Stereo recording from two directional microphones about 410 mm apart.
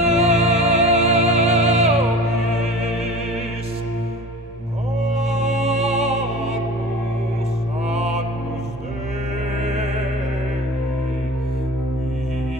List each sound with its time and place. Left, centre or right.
0.1 s music: centre
5.0 s music: centre
7.9 s music: centre